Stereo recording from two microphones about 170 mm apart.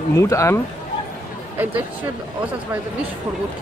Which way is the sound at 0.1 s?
15° left (ahead or behind).